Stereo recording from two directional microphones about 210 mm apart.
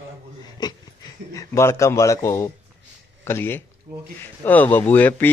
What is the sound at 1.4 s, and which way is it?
Speech, 15° left (ahead or behind).